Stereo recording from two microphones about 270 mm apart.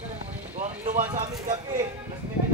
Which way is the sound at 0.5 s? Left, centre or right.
Right.